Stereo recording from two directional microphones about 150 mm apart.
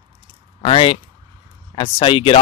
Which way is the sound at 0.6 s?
40° left (ahead or behind).